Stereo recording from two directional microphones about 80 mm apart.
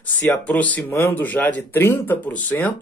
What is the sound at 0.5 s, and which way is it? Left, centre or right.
Speech, centre.